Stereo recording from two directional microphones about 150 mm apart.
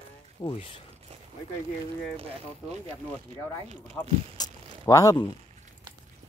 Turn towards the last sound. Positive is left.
turn(degrees=20)  # may be behind; listen again after turning